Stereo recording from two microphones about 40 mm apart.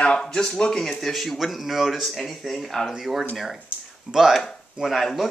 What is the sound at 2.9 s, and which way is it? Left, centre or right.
Speech, centre.